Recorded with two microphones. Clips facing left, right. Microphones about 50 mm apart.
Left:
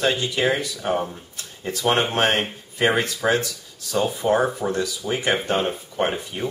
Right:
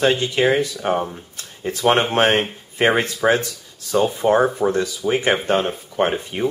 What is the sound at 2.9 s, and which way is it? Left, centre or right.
Speech, centre.